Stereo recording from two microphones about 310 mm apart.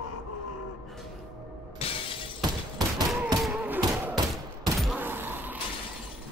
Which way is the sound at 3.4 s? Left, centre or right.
Centre.